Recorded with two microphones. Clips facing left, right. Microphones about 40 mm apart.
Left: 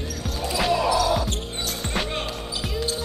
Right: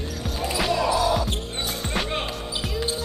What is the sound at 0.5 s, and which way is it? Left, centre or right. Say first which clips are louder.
Basketball bounce: left 2 dB; centre.